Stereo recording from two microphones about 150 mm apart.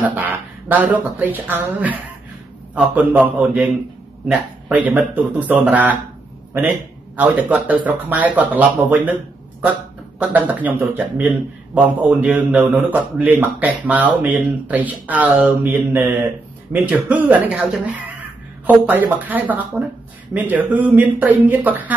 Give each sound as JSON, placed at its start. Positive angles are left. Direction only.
{"t": 0.1, "sound": "speech", "side_deg": -10}
{"t": 7.2, "sound": "speech", "side_deg": -10}